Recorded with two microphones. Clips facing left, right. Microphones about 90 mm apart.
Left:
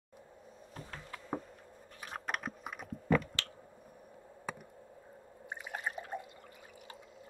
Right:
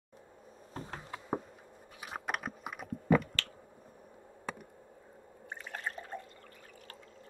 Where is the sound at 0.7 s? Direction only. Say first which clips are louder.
Right 5 dB; 30° right (ahead or behind).